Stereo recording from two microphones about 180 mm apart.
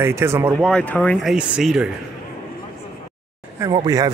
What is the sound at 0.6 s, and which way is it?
Speech, 5° left (ahead or behind).